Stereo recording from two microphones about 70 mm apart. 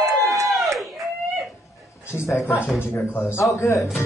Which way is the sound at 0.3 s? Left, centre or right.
Right.